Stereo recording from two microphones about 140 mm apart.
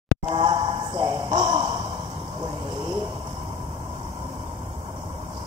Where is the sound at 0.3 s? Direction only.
35° right (ahead or behind).